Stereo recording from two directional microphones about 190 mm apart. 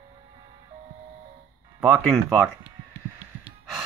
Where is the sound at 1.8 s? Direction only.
5° right (ahead or behind).